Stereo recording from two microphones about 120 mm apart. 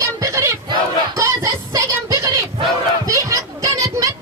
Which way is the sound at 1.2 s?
25° right (ahead or behind).